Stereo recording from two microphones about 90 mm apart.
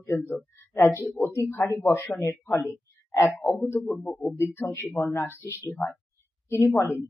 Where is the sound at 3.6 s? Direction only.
20° left (ahead or behind).